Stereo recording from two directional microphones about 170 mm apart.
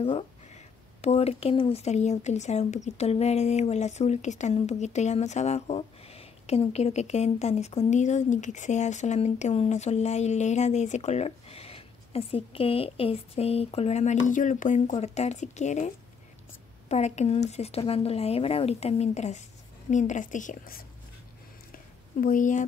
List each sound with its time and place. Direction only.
1.0 s speech: 40° left (ahead or behind)
16.9 s a woman's voice: 40° left (ahead or behind)
21.7 s a sound: 55° left (ahead or behind)